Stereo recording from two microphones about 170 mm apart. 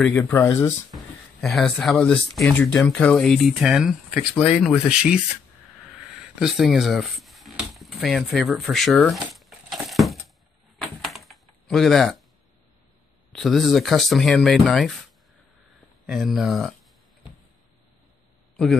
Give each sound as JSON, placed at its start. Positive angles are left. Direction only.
{"t": 0.2, "sound": "speech", "side_deg": 15}
{"t": 0.9, "sound": "speech", "side_deg": 0}
{"t": 6.4, "sound": "a sound", "side_deg": 0}
{"t": 10.8, "sound": "door", "side_deg": 0}
{"t": 13.3, "sound": "speech", "side_deg": 0}
{"t": 16.1, "sound": "speech", "side_deg": 0}